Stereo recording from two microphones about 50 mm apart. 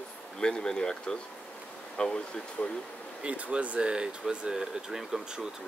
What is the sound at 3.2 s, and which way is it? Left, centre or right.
Speech, right.